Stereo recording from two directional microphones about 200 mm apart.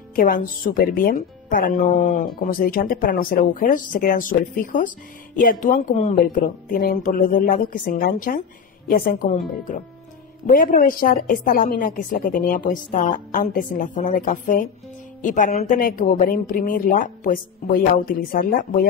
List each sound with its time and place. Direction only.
0.1 s speech: 45° left (ahead or behind)
10.4 s speech: 45° left (ahead or behind)